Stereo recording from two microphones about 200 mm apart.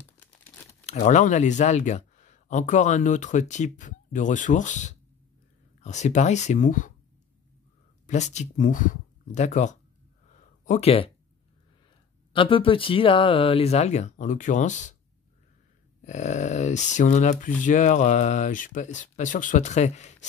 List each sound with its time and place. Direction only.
0.0 s crumpling: 10° left (ahead or behind)
0.8 s speech: 40° left (ahead or behind)
8.1 s speech: 35° left (ahead or behind)
12.3 s speech: 25° left (ahead or behind)
16.0 s speech: 35° left (ahead or behind)